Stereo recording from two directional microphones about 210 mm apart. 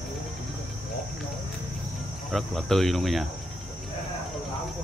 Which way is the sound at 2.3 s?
Centre (ahead or behind).